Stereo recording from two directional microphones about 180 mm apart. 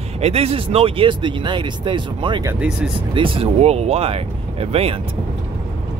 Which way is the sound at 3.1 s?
30° right (ahead or behind).